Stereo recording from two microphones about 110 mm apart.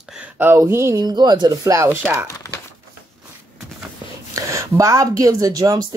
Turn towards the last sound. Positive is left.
turn(degrees=-30)  # may be behind; listen again after turning